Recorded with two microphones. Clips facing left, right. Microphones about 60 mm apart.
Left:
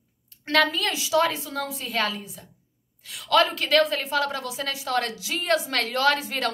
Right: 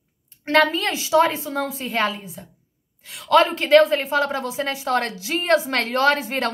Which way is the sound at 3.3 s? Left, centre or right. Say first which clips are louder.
Right 6 dB; right.